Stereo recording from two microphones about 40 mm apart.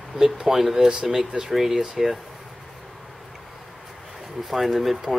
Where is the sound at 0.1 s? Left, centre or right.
Centre.